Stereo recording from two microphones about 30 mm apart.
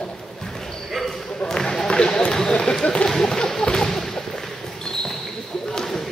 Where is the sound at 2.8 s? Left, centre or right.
Left.